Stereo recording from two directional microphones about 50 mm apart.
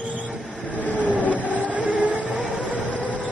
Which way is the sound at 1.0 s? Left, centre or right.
Right.